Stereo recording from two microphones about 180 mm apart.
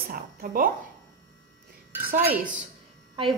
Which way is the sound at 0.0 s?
55° right (ahead or behind).